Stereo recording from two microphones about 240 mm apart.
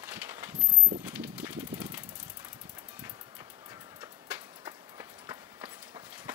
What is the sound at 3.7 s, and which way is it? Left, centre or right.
Clip-clop, centre.